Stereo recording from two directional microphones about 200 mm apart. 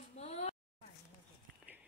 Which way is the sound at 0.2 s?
35° left (ahead or behind).